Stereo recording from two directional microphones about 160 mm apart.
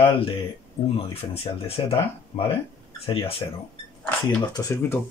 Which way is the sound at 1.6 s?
35° left (ahead or behind).